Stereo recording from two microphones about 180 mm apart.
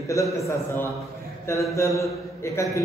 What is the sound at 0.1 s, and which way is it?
A man's voice, 15° left (ahead or behind).